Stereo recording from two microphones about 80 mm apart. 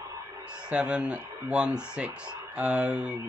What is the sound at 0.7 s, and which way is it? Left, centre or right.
Speech, centre.